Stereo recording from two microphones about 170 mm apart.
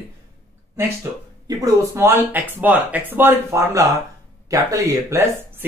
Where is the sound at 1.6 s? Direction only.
15° right (ahead or behind).